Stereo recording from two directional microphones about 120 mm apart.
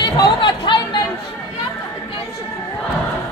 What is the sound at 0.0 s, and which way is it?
Chatter, 40° left (ahead or behind).